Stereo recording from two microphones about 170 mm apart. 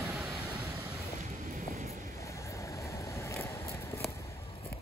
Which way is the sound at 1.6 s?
60° right (ahead or behind).